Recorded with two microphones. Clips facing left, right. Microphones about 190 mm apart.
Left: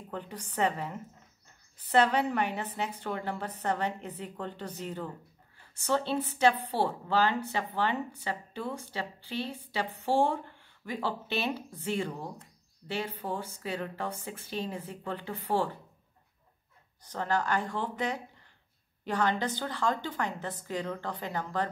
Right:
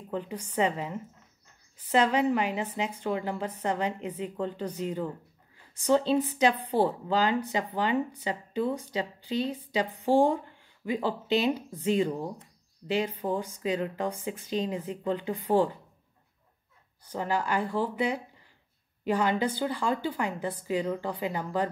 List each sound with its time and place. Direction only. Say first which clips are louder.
0.1 s a woman's voice: right 6 dB; 10° right (ahead or behind)
17.1 s a woman's voice: right 1 dB; 10° right (ahead or behind)